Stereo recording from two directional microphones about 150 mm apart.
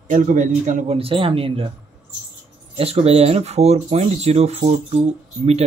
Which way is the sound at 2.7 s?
40° right (ahead or behind).